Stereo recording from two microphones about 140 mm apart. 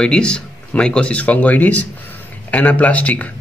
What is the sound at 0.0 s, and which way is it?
Speech, 5° left (ahead or behind).